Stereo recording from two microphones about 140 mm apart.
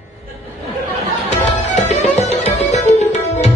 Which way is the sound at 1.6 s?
55° left (ahead or behind).